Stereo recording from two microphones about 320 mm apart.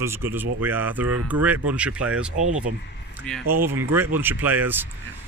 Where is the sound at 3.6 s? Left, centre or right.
Centre.